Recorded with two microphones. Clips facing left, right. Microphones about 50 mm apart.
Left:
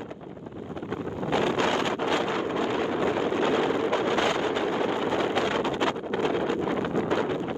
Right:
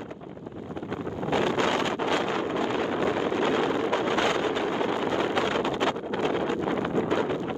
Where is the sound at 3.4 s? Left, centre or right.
Left.